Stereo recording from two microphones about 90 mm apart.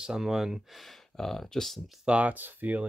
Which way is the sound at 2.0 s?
15° right (ahead or behind).